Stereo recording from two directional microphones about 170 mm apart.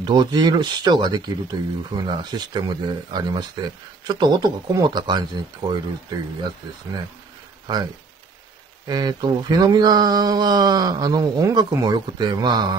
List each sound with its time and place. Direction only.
0.0 s speech: 25° right (ahead or behind)